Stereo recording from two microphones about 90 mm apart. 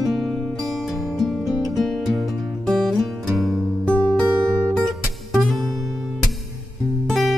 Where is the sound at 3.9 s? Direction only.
10° left (ahead or behind).